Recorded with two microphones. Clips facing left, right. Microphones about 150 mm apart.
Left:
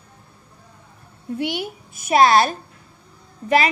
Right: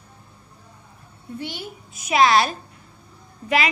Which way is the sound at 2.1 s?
45° left (ahead or behind).